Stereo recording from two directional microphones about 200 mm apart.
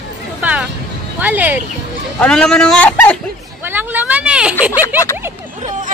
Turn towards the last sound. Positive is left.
turn(degrees=-10)  # may be behind; listen again after turning